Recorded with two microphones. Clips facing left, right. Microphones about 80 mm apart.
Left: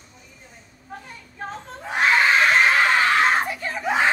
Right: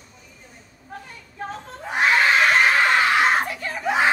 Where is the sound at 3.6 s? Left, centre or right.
Left.